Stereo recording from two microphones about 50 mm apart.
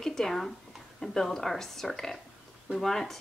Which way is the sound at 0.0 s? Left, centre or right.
Centre.